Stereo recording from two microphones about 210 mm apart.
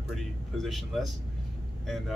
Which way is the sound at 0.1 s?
Centre (ahead or behind).